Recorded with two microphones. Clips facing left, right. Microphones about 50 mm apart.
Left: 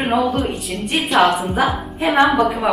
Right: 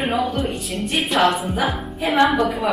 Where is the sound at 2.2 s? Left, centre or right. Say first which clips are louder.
Left 2 dB; centre.